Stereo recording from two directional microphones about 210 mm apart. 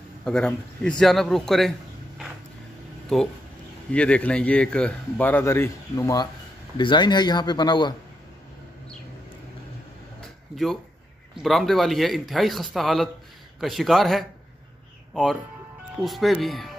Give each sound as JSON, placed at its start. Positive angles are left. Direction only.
{"t": 0.2, "sound": "speech", "side_deg": 5}
{"t": 3.9, "sound": "a man's voice", "side_deg": 5}
{"t": 10.5, "sound": "speech", "side_deg": 0}
{"t": 16.0, "sound": "speech", "side_deg": 0}